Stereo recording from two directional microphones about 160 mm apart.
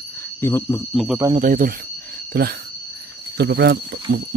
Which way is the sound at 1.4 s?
60° right (ahead or behind).